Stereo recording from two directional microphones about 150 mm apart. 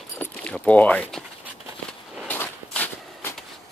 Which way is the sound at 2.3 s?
10° left (ahead or behind).